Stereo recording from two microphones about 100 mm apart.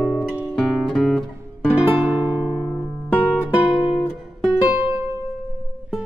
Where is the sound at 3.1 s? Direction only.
15° left (ahead or behind).